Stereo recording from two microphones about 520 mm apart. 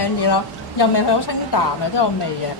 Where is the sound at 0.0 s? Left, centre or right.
Left.